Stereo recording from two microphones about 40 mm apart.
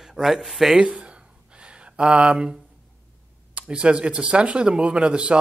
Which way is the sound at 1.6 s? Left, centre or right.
Right.